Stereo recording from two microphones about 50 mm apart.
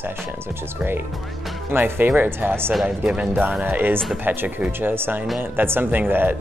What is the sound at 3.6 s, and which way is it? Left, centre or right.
Speech, right.